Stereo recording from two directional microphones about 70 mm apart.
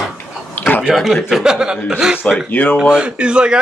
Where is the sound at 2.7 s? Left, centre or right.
Centre.